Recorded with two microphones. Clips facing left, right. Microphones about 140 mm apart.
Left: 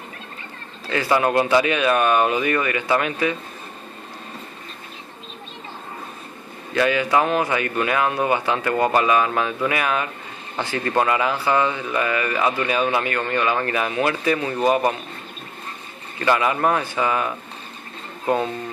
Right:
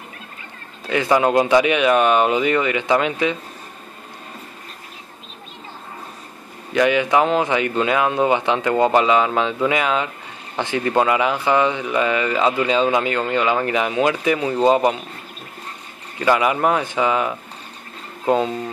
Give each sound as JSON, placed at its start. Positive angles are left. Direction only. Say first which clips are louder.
{"t": 0.8, "sound": "speech", "louder": "right 3 dB", "side_deg": -15}
{"t": 6.7, "sound": "speech", "louder": "right 2 dB", "side_deg": -15}
{"t": 16.2, "sound": "a man's voice", "louder": "right 2 dB", "side_deg": -15}